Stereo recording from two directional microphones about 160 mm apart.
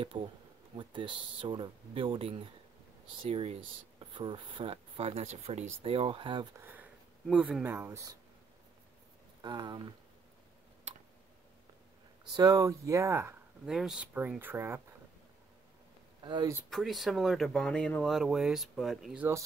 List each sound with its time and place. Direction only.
0.1 s speech: 30° right (ahead or behind)
6.5 s speech: 15° right (ahead or behind)
9.4 s speech: 25° right (ahead or behind)
12.4 s speech: 20° right (ahead or behind)
13.7 s speech: 5° right (ahead or behind)
16.3 s speech: 30° right (ahead or behind)
16.7 s speech: centre (ahead or behind)